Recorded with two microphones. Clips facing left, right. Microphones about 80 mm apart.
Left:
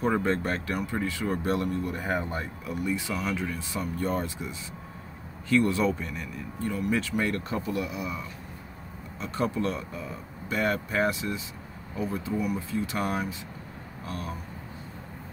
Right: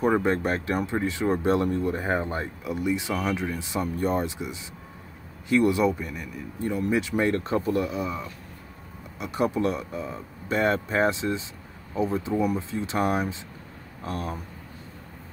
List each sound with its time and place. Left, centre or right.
0.0 s speech: centre
6.6 s speech: right
9.2 s speech: centre